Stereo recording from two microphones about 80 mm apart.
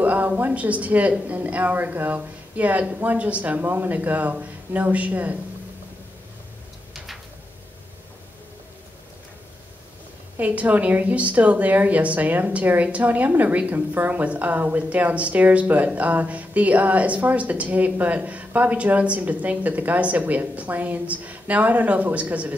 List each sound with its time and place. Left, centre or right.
0.0 s a sound: right
0.5 s a woman's voice: centre
10.3 s a woman's voice: centre